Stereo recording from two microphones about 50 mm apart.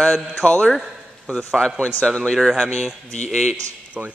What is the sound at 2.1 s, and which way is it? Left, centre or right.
Speech, centre.